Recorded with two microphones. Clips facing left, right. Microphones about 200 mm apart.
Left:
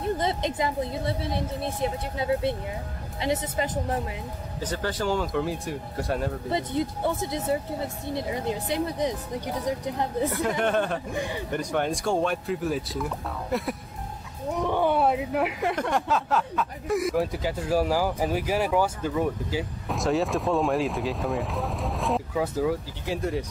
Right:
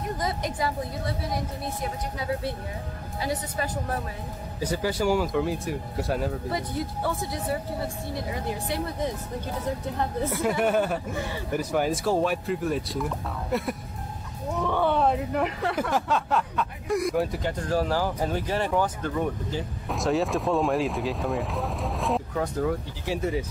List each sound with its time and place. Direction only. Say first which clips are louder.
0.0 s speech: left 3 dB; 25° left (ahead or behind)
4.6 s speech: right 3 dB; 10° right (ahead or behind)
6.5 s speech: left 3 dB; 25° left (ahead or behind)
10.3 s speech: right 4 dB; 10° right (ahead or behind)
11.1 s a man's voice: left 2 dB; 15° left (ahead or behind)
11.5 s speech: right 2 dB; 5° right (ahead or behind)
14.5 s a sound: left 1 dB; 15° left (ahead or behind)
15.9 s speech: even; centre (ahead or behind)